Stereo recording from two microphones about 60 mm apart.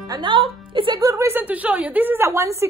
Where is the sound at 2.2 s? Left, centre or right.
Right.